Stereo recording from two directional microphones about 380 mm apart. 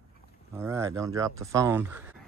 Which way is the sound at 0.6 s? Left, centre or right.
Centre.